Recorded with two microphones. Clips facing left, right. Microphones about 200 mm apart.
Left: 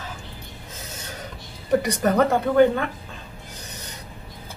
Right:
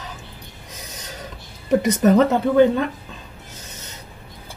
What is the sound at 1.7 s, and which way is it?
Speech, 20° right (ahead or behind).